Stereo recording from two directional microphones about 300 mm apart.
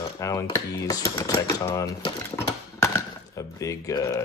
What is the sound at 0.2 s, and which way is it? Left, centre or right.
Speech, centre.